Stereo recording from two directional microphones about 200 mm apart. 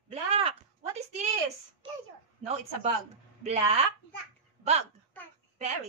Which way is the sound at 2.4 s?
35° right (ahead or behind).